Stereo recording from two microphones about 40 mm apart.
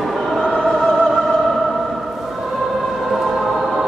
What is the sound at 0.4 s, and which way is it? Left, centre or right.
Choir, centre.